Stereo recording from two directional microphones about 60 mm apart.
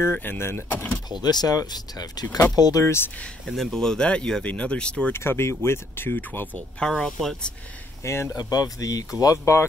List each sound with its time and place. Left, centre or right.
0.1 s speech: left
1.2 s speech: left
2.8 s speech: left
3.4 s speech: centre
5.1 s speech: left
7.1 s speech: centre
8.0 s speech: left
8.4 s speech: left
9.4 s speech: left